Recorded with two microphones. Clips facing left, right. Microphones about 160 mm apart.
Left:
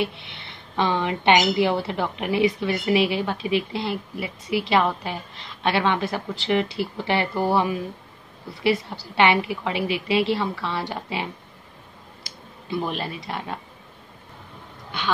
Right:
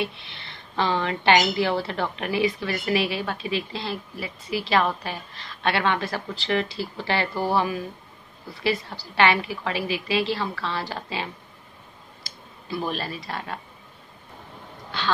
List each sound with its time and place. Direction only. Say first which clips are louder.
0.2 s a woman's voice: left 2 dB; 20° left (ahead or behind)
9.1 s a woman's voice: left 2 dB; 20° left (ahead or behind)